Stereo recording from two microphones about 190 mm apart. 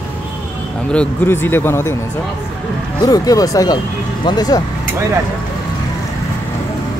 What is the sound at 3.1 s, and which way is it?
Speech, 20° left (ahead or behind).